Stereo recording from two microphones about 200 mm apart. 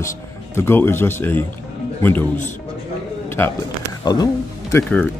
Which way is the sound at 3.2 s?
10° left (ahead or behind).